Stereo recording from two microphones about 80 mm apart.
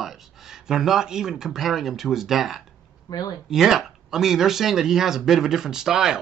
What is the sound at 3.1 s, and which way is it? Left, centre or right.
Speech, left.